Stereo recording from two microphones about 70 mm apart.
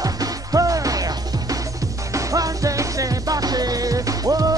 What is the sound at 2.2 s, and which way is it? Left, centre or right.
Music, right.